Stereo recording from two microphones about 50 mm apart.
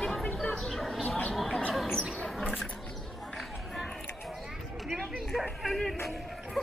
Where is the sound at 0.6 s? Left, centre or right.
Centre.